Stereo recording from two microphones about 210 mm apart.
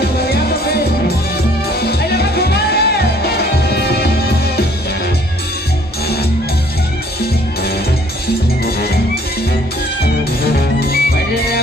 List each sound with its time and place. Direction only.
0.3 s music: 50° left (ahead or behind)
8.6 s music: 50° left (ahead or behind)
10.4 s music: 45° left (ahead or behind)